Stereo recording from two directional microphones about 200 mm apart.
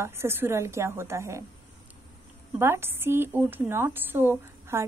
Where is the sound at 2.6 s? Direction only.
10° right (ahead or behind).